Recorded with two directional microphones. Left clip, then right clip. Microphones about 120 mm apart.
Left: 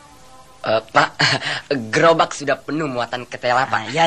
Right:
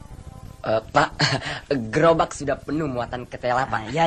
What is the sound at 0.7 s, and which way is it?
Speech, 45° right (ahead or behind).